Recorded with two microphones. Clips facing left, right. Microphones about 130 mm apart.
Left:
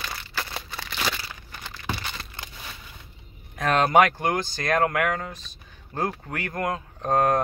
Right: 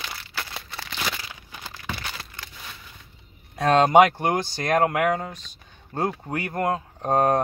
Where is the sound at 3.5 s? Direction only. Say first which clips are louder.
Right 3 dB; 30° right (ahead or behind); by 4.8 s 15° right (ahead or behind).